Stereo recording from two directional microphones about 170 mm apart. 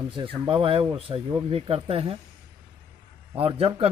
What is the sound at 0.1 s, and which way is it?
A man's voice, 30° right (ahead or behind).